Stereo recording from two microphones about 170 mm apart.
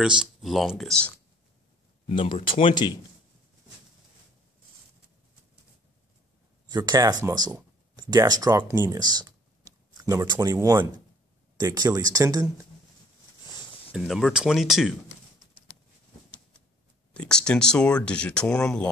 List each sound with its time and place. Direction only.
0.2 s speech: centre (ahead or behind)
2.0 s speech: 35° left (ahead or behind)
6.7 s speech: 25° right (ahead or behind)
13.9 s speech: centre (ahead or behind)
17.1 s speech: 5° left (ahead or behind)